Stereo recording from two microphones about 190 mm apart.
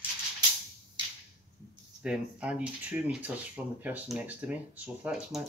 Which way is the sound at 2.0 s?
5° right (ahead or behind).